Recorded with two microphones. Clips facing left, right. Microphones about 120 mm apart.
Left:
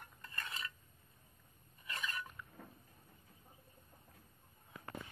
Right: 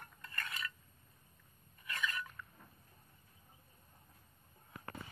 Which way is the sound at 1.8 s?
30° left (ahead or behind).